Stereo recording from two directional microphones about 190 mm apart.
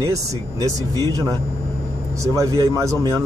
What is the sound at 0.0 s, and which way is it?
Speech, 20° right (ahead or behind).